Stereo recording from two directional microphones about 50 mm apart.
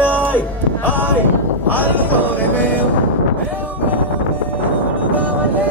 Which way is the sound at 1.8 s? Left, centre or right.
Right.